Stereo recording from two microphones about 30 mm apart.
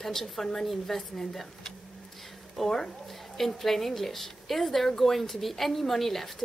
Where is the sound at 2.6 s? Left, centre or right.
Centre.